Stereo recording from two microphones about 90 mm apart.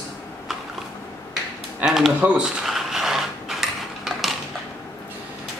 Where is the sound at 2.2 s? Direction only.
15° right (ahead or behind).